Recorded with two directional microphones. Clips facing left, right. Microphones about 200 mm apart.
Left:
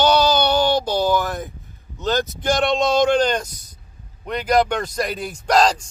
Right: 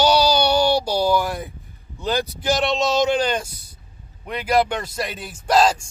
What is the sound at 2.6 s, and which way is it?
Speech, 50° left (ahead or behind).